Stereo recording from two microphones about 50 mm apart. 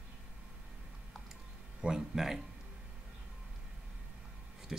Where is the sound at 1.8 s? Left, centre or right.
Centre.